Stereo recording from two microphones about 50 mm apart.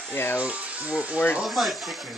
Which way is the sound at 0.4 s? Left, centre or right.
Right.